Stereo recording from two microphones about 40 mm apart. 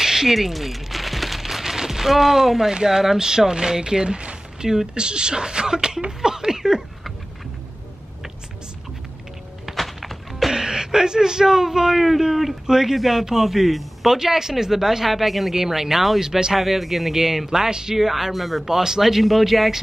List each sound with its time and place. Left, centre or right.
0.0 s a sound: centre
2.7 s speech: centre
9.7 s thunk: centre
10.5 s speech: centre
16.5 s speech: centre